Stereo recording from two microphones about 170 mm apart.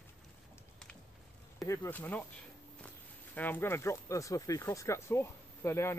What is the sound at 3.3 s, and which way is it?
Speech, 10° left (ahead or behind).